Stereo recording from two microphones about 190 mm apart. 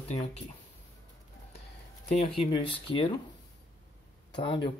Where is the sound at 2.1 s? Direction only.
30° left (ahead or behind).